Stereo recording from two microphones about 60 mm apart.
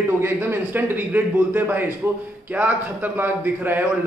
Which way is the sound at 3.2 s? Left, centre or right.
Right.